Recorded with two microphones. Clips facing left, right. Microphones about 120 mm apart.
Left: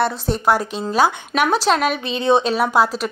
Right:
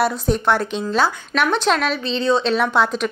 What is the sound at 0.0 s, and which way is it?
Speech, centre (ahead or behind).